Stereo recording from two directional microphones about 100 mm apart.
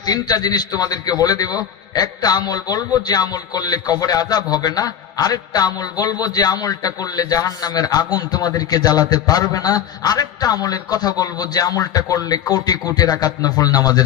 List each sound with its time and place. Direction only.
0.0 s a man's voice: 40° left (ahead or behind)